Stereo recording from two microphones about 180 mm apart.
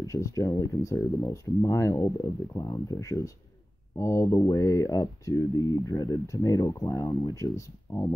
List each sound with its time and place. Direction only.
0.0 s speech: 15° left (ahead or behind)